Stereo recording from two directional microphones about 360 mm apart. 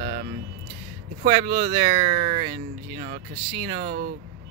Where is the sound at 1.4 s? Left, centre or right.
Centre.